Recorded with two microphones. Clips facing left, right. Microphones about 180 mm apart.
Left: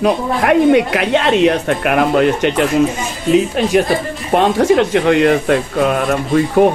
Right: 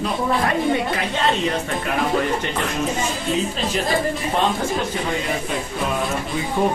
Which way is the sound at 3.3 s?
70° left (ahead or behind).